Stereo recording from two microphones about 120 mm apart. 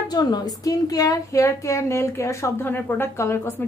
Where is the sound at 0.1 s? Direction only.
35° left (ahead or behind).